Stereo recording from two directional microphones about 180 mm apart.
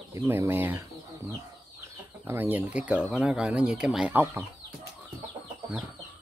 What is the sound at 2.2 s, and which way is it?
Speech, 10° right (ahead or behind).